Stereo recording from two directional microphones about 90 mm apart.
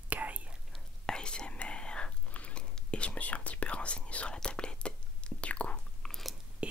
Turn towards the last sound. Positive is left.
turn(degrees=-10)  # may be behind; listen again after turning